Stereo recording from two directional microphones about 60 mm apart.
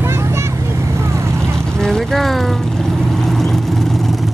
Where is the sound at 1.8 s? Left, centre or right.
Centre.